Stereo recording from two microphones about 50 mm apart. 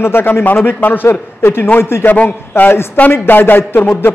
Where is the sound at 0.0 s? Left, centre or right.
Left.